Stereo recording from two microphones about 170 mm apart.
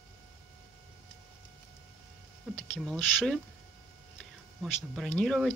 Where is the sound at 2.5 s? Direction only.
Centre (ahead or behind).